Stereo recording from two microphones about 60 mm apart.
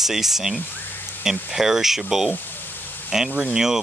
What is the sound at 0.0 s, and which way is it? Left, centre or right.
Speech, centre.